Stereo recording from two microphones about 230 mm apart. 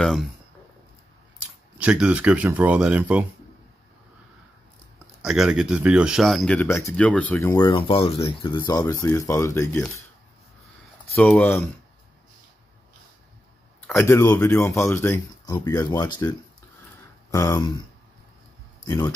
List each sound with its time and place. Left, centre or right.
0.0 s speech: centre
1.8 s speech: centre
5.2 s speech: centre
11.1 s speech: centre
13.7 s speech: centre
18.9 s speech: centre